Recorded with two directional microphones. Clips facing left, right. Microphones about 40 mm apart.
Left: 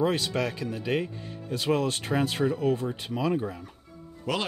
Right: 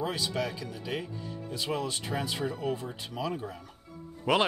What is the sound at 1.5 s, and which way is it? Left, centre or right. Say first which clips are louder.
Speech: left 7 dB; left.